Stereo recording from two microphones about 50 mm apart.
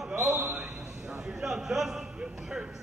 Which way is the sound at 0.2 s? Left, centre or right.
Centre.